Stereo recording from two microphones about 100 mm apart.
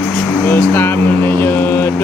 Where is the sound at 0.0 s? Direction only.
15° left (ahead or behind).